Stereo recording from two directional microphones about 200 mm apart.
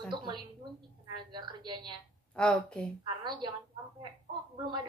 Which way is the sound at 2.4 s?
5° left (ahead or behind).